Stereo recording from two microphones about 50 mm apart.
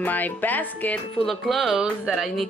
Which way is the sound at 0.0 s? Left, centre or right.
Left.